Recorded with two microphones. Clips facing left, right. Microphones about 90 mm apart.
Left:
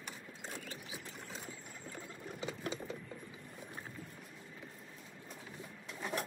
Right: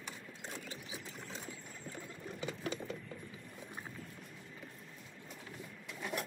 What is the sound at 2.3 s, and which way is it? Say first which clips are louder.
Sewing machine: right 1 dB; 20° left (ahead or behind).